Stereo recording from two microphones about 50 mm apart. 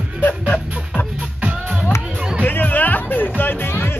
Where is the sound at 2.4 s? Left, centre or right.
Left.